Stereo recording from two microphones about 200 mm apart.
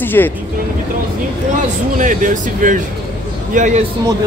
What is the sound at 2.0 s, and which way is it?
Speech, 40° right (ahead or behind).